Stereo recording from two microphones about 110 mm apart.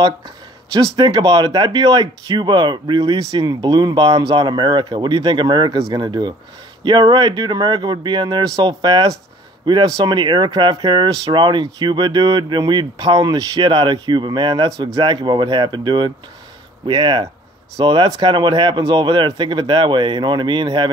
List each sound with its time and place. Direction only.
0.9 s speech: 40° right (ahead or behind)